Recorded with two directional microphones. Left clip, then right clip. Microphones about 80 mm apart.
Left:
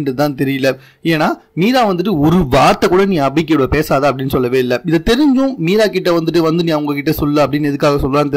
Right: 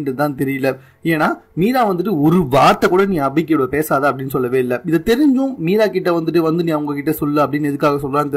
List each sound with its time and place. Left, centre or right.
0.2 s speech: left